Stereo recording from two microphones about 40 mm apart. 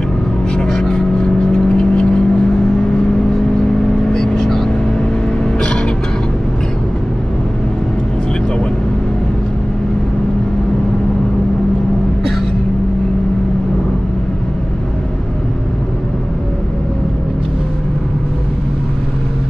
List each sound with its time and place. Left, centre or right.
0.8 s vehicle: left
4.1 s vehicle: centre